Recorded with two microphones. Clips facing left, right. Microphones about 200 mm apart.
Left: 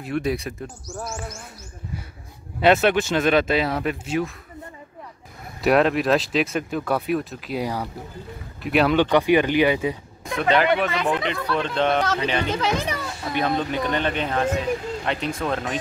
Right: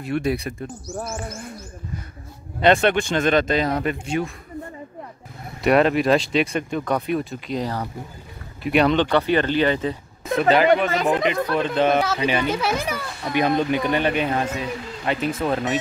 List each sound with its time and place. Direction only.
0.0 s speech: centre (ahead or behind)
0.9 s bird: 55° right (ahead or behind)
2.6 s speech: 5° left (ahead or behind)
5.6 s speech: centre (ahead or behind)
10.9 s speech: 45° right (ahead or behind)
11.5 s a child's voice: 5° right (ahead or behind)